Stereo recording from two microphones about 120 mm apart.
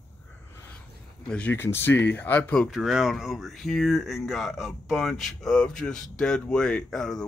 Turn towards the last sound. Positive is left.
turn(degrees=5)  # may be behind; listen again after turning